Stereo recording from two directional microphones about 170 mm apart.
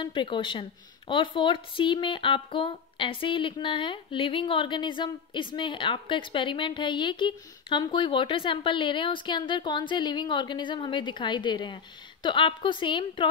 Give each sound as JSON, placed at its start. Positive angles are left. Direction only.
{"t": 0.0, "sound": "speech", "side_deg": 30}